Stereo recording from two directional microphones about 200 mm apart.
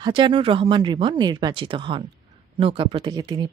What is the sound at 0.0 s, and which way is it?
Speech, 25° right (ahead or behind).